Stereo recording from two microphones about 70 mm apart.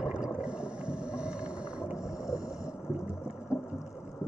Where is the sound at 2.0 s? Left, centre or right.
Left.